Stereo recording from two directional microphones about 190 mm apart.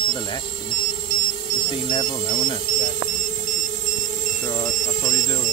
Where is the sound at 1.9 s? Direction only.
25° left (ahead or behind).